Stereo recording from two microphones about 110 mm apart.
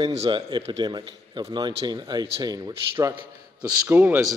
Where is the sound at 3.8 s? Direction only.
15° right (ahead or behind).